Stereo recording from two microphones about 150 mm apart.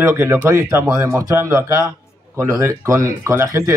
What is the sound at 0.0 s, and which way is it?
Speech, 15° right (ahead or behind).